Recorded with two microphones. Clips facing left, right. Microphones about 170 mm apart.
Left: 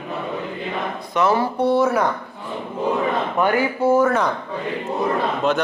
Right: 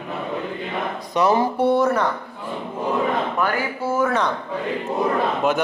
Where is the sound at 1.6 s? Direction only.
5° left (ahead or behind).